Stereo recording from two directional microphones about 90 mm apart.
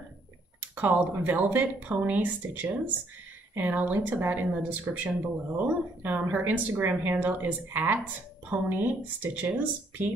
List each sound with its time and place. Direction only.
0.6 s speech: 15° right (ahead or behind)